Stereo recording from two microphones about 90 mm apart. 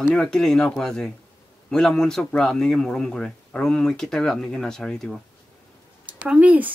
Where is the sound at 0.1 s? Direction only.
5° left (ahead or behind).